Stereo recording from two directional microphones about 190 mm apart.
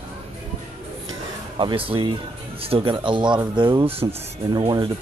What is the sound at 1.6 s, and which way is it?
Speech, 30° right (ahead or behind).